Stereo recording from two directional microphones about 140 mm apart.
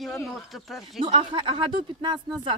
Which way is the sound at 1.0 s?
40° right (ahead or behind).